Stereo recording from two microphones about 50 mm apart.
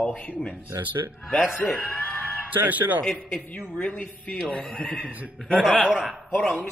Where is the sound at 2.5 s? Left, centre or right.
Right.